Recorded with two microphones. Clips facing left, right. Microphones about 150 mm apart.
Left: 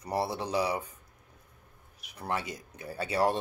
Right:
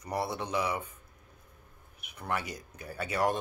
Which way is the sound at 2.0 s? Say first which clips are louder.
Left 1 dB; 35° left (ahead or behind).